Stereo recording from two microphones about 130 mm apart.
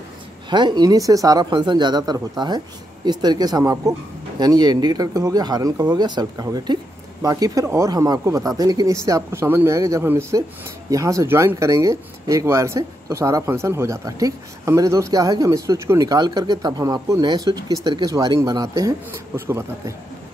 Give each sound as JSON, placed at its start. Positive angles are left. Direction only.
{"t": 0.5, "sound": "speech", "side_deg": -35}